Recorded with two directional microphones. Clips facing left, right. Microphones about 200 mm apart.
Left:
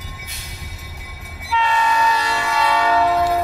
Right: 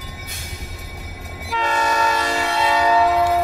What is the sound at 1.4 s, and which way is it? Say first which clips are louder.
Train: left 2 dB; 45° right (ahead or behind).